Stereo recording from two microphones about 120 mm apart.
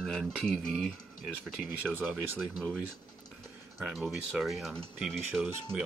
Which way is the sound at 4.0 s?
Centre (ahead or behind).